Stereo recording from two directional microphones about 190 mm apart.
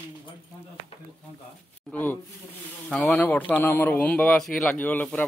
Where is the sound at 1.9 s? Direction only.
10° left (ahead or behind).